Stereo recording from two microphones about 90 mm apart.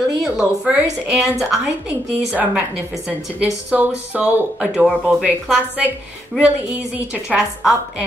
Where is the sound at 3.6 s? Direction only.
15° right (ahead or behind).